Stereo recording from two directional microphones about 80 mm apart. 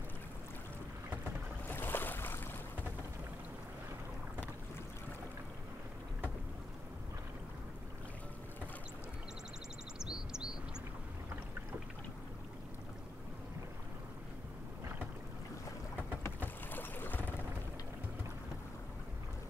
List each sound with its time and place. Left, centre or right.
1.7 s boat: left
9.9 s chirp: centre
16.3 s boat: left